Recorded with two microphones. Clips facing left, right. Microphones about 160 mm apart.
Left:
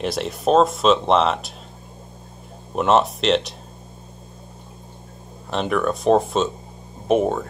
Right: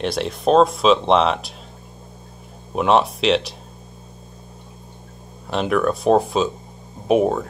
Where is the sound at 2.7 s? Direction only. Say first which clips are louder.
Right 1 dB; centre (ahead or behind).